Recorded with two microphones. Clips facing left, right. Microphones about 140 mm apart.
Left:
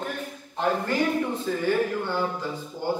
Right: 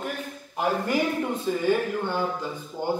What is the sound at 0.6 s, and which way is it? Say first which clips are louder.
Speech: even; 15° right (ahead or behind).